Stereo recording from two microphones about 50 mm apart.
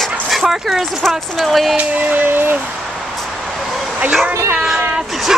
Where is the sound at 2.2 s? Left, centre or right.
Right.